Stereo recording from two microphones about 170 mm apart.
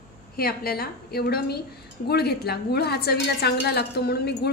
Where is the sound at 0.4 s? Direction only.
65° left (ahead or behind).